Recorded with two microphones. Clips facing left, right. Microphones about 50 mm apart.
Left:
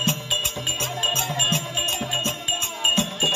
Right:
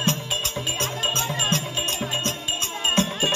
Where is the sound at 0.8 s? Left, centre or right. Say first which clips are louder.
Left 1 dB; left.